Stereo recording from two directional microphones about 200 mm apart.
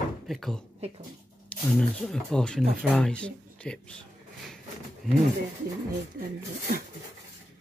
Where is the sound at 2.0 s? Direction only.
Centre (ahead or behind).